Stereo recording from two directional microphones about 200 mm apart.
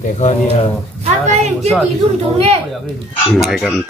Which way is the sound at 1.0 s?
35° right (ahead or behind).